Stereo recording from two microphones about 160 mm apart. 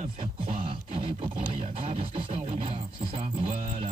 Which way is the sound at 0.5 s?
35° right (ahead or behind).